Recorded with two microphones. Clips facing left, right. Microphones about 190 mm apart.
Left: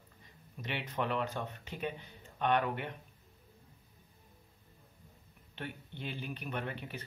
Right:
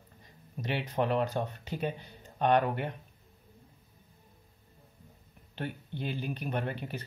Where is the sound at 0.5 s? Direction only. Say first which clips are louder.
Right 6 dB; 40° right (ahead or behind).